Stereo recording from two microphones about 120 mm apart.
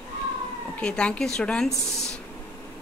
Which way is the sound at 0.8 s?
10° left (ahead or behind).